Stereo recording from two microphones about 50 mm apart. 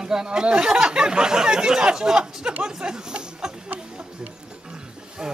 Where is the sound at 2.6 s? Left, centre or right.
Centre.